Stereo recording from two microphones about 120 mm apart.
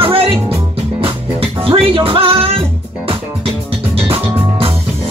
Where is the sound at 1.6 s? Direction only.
50° right (ahead or behind).